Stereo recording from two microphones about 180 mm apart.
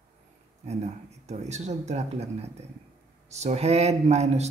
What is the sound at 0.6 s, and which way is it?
Speech, 40° right (ahead or behind).